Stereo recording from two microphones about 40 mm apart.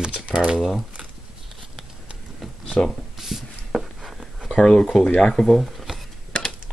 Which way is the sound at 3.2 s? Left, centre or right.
Centre.